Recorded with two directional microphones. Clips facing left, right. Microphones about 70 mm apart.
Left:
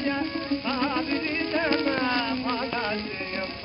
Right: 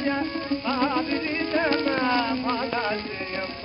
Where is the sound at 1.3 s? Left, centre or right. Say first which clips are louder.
Right 2 dB; centre.